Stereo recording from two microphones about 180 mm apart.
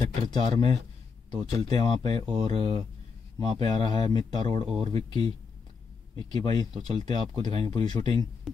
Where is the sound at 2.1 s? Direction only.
35° right (ahead or behind).